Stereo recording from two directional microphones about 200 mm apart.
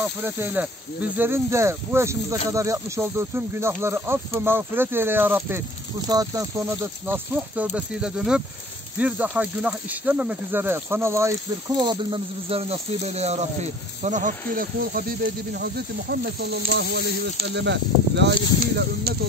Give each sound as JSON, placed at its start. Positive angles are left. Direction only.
{"t": 0.0, "sound": "speech", "side_deg": -10}